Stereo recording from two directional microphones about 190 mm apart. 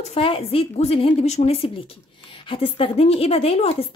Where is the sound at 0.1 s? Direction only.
30° left (ahead or behind).